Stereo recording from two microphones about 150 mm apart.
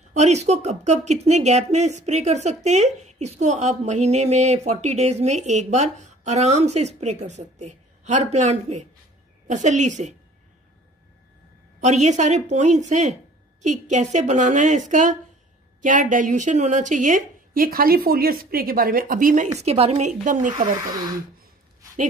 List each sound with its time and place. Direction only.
0.1 s speech: 50° right (ahead or behind)
11.8 s a woman's voice: 50° right (ahead or behind)
19.6 s speech: 45° right (ahead or behind)